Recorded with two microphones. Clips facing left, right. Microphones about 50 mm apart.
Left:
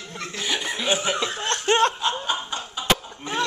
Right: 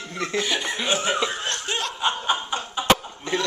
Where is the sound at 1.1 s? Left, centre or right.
Centre.